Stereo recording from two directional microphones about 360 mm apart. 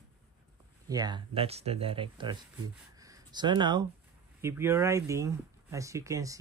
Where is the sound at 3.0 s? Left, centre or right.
Centre.